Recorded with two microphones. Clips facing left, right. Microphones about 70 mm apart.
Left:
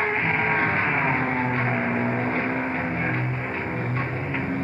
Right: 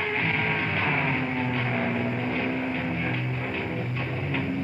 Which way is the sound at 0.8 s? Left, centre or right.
Left.